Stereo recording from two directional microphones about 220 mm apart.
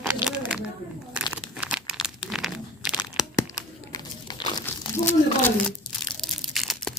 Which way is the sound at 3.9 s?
20° left (ahead or behind).